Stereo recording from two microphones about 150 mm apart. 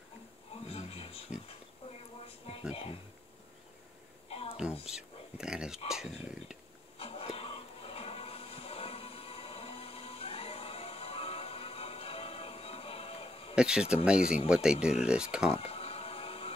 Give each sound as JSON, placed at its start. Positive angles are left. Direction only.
{"t": 0.7, "sound": "a sound", "side_deg": 40}
{"t": 2.7, "sound": "speech", "side_deg": 40}
{"t": 4.3, "sound": "a sound", "side_deg": 40}
{"t": 4.8, "sound": "speech", "side_deg": -5}
{"t": 7.0, "sound": "music", "side_deg": 40}
{"t": 13.6, "sound": "speech", "side_deg": -5}
{"t": 15.5, "sound": "music", "side_deg": 40}